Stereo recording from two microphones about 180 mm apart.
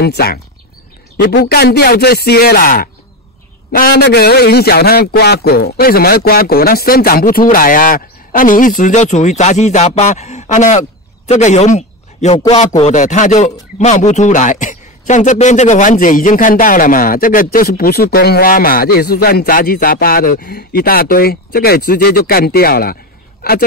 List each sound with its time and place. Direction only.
0.0 s a man's voice: 60° left (ahead or behind)